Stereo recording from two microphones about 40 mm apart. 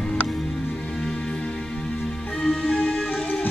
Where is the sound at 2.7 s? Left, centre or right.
Left.